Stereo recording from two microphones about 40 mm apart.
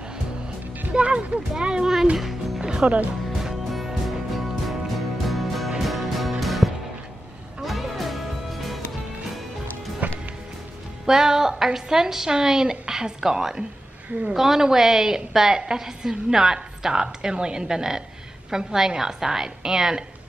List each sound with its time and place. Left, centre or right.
0.9 s music: right
1.5 s speech: right
2.6 s music: centre
3.7 s music: centre
10.0 s music: right
11.1 s a woman's voice: centre